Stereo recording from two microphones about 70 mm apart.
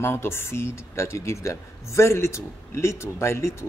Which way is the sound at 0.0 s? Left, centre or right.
Left.